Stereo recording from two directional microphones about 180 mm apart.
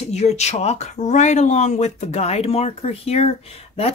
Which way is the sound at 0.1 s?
40° left (ahead or behind).